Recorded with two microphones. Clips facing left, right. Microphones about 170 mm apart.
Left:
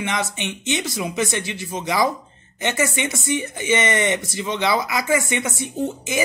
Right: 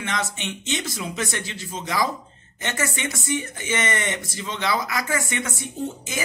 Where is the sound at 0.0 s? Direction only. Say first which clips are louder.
Left 3 dB; 15° left (ahead or behind).